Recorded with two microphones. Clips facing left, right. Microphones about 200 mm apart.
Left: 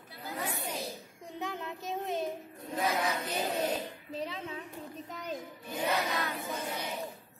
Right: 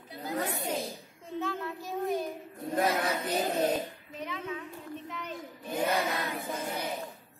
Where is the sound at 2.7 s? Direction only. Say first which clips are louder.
Right 3 dB; 50° right (ahead or behind).